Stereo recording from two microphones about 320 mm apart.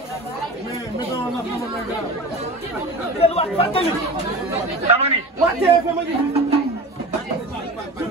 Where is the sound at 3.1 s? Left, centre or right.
Centre.